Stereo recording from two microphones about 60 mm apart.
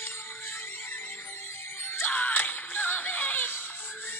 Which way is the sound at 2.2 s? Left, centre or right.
Left.